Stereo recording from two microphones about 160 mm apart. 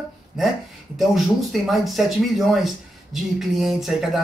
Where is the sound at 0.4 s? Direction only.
Centre (ahead or behind).